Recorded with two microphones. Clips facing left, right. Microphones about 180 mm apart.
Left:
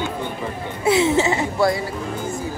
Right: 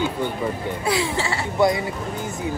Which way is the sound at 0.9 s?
25° left (ahead or behind).